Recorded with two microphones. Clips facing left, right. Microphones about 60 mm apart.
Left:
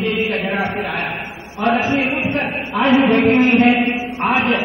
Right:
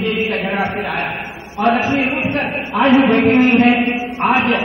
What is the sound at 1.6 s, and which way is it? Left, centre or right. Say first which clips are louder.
A man's voice: right 2 dB; centre.